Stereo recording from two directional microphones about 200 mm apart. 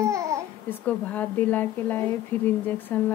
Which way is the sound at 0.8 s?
10° left (ahead or behind).